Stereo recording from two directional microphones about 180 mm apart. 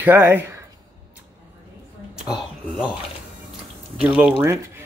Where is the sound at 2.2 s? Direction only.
5° right (ahead or behind).